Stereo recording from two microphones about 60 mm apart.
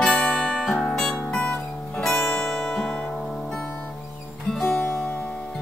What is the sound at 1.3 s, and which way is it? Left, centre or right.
Guitar, centre.